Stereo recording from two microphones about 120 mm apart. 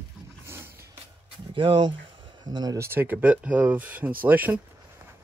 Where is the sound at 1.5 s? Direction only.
45° right (ahead or behind).